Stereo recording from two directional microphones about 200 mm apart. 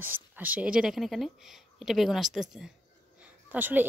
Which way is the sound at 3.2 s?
10° right (ahead or behind).